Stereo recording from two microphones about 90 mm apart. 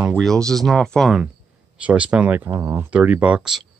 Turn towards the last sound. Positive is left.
turn(degrees=-10)  # may be behind; listen again after turning